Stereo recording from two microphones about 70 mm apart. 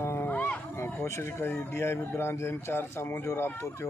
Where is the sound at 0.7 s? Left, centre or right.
Left.